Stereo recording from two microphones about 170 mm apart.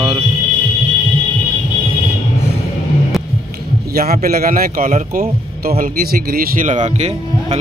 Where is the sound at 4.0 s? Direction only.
60° right (ahead or behind); by 7.6 s 40° right (ahead or behind).